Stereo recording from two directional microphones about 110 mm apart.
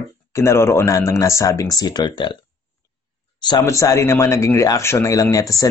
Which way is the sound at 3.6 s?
30° left (ahead or behind).